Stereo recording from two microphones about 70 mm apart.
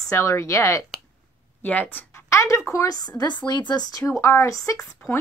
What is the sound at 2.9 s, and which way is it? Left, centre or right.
A woman's voice, left.